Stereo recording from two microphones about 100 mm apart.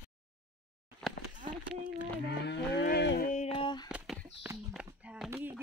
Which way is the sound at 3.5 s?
50° left (ahead or behind).